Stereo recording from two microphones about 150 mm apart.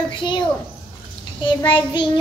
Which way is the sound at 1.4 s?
30° left (ahead or behind).